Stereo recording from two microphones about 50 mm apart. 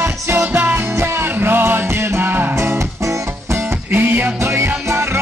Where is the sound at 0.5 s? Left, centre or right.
Right.